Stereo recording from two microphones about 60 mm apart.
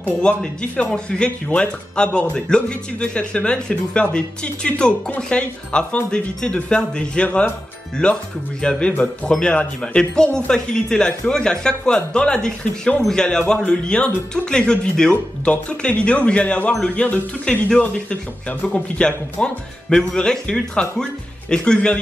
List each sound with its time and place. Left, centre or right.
0.2 s speech: centre
7.2 s speech: left
8.0 s speech: centre